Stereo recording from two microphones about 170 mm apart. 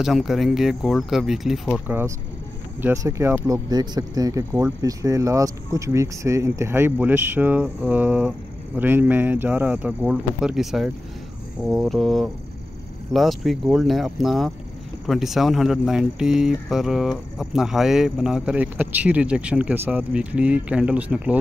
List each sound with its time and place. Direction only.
0.0 s speech: centre (ahead or behind)
1.9 s speech: 15° right (ahead or behind)